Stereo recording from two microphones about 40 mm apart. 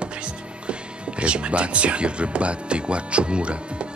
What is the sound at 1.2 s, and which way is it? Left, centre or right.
Speech, right.